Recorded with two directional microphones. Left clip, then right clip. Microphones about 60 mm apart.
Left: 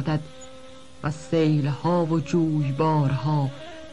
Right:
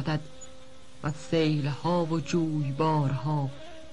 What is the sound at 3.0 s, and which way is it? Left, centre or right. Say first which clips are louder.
Speech: left 4 dB; centre.